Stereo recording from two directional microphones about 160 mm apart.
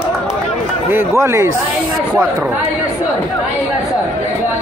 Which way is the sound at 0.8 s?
15° right (ahead or behind).